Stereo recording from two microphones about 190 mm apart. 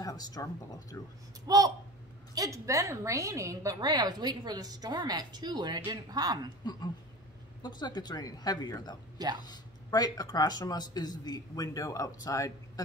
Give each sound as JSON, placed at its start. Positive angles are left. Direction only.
{"t": 0.0, "sound": "speech", "side_deg": 20}
{"t": 1.5, "sound": "a woman's voice", "side_deg": -20}
{"t": 6.6, "sound": "speech", "side_deg": 20}